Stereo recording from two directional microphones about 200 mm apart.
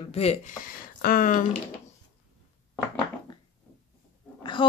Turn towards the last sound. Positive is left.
turn(degrees=25)  # may be behind; listen again after turning